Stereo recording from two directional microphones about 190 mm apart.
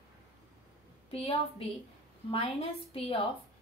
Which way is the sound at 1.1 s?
30° left (ahead or behind).